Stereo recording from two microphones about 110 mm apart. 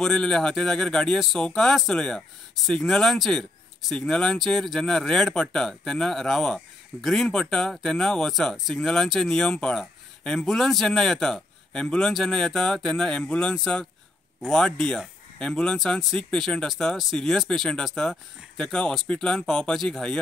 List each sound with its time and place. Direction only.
0.0 s speech: 5° left (ahead or behind)